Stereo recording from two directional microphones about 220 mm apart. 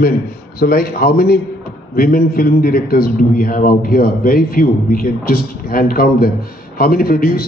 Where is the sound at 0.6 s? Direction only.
40° left (ahead or behind).